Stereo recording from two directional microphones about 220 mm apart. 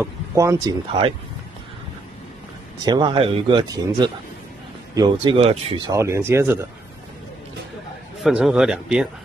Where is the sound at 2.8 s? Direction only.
20° right (ahead or behind).